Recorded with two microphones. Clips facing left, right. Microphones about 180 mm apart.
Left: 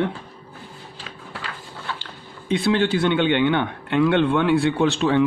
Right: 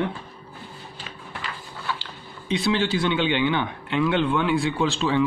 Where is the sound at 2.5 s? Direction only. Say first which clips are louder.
Left 3 dB; 55° left (ahead or behind).